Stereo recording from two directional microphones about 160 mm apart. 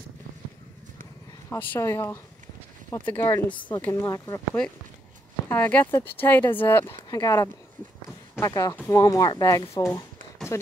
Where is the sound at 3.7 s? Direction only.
20° left (ahead or behind).